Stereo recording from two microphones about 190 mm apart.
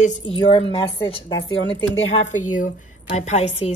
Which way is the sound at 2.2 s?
40° left (ahead or behind).